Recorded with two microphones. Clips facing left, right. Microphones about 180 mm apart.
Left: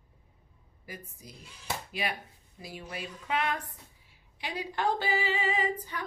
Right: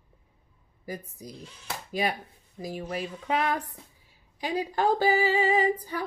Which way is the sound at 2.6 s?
40° right (ahead or behind).